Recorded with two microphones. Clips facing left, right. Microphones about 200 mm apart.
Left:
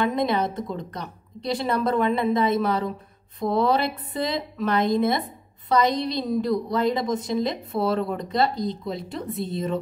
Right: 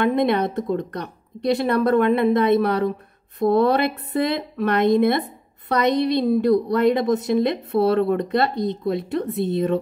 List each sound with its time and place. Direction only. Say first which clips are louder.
0.0 s speech: right 4 dB; 60° right (ahead or behind)